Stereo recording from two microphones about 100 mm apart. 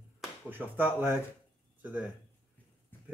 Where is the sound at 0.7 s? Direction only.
20° right (ahead or behind).